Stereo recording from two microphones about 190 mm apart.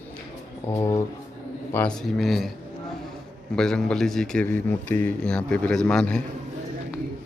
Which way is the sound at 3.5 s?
5° left (ahead or behind).